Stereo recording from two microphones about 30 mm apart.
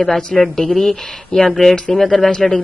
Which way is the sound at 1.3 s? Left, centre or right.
Left.